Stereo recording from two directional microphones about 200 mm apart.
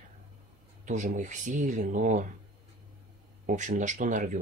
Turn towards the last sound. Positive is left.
turn(degrees=-40)  # may be behind; listen again after turning